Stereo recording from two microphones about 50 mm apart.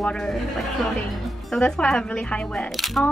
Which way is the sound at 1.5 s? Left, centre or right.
Centre.